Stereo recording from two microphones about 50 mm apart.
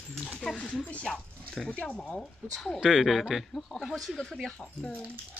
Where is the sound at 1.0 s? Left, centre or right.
Centre.